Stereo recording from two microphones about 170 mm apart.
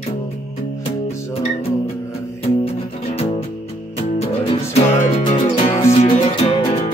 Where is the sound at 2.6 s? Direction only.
35° left (ahead or behind).